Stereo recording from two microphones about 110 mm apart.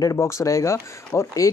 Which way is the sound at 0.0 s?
30° left (ahead or behind).